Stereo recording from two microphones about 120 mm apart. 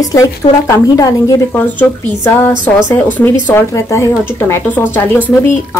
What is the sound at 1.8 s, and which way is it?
A woman's voice, 15° left (ahead or behind).